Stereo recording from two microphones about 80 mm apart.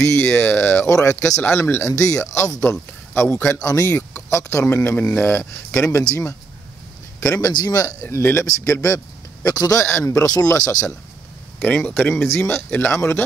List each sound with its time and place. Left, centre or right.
0.0 s speech: left
4.3 s speech: left
7.4 s speech: left
9.8 s speech: left
11.6 s speech: left